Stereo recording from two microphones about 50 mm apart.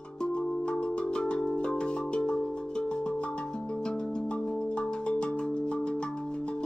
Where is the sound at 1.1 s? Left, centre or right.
Centre.